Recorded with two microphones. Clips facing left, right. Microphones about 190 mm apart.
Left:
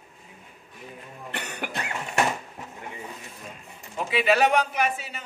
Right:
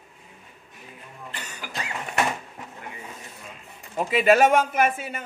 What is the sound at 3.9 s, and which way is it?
Speech, 45° right (ahead or behind).